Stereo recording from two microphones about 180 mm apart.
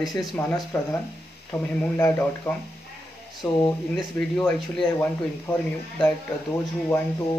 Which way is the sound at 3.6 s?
5° left (ahead or behind).